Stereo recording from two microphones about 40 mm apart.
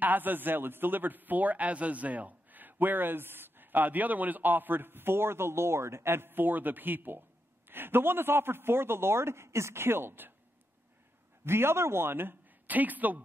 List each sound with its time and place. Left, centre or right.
0.0 s a man's voice: right
11.4 s speech: right
12.6 s a man's voice: right